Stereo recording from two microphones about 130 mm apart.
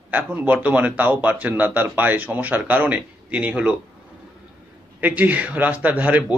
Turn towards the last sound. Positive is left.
turn(degrees=-10)  # may be behind; listen again after turning